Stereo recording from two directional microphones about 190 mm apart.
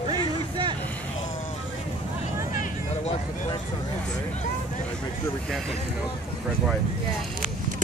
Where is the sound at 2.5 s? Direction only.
35° left (ahead or behind).